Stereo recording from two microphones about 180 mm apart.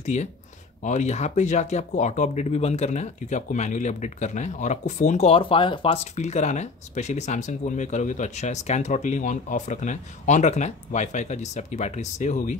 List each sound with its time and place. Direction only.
0.0 s speech: 40° left (ahead or behind)